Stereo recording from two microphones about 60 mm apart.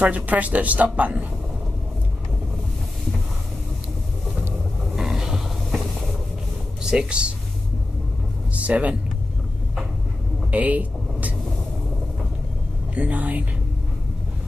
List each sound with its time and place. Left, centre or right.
0.0 s a woman's voice: right
4.9 s roaring cats: centre
6.8 s speech: centre
8.5 s speech: right
10.5 s vehicle: right
12.9 s a woman's voice: right